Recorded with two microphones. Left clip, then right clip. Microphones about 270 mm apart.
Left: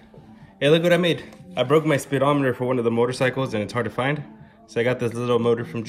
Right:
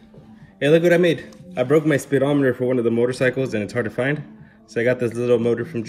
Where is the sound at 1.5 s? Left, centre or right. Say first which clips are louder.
Right 1 dB; left.